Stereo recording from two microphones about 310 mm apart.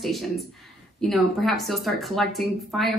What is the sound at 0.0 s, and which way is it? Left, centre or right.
Speech, centre.